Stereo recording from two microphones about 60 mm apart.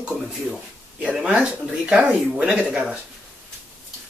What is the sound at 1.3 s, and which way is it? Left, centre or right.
Speech, centre.